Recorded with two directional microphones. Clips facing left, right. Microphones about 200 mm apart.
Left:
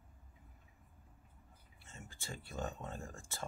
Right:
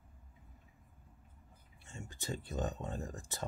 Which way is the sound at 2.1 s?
20° right (ahead or behind).